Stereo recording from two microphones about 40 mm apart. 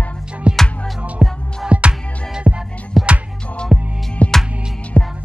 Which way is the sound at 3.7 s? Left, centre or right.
Centre.